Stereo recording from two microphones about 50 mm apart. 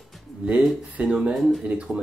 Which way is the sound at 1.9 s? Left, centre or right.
Right.